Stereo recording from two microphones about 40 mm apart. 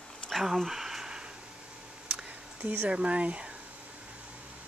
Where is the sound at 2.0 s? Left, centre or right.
Right.